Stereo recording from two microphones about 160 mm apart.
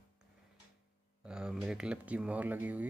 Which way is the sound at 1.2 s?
5° right (ahead or behind).